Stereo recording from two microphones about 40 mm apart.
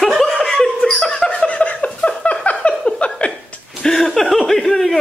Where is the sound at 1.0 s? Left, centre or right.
Centre.